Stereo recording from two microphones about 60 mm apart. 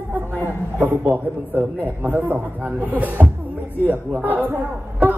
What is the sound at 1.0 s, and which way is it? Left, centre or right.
A man's voice, right.